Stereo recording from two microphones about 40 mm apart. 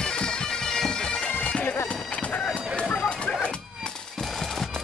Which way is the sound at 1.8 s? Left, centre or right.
Left.